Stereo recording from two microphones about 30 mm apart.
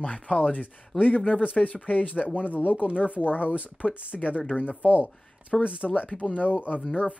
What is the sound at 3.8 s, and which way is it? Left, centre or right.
Speech, left.